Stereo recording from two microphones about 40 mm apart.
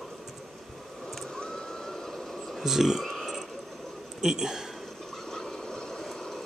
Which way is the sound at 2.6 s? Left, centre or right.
Centre.